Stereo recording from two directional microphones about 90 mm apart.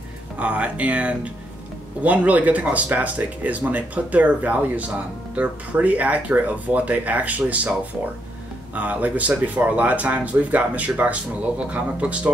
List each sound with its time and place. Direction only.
0.4 s speech: 15° right (ahead or behind)
8.7 s speech: 15° right (ahead or behind)